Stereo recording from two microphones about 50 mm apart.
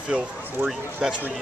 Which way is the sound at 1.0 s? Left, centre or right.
Centre.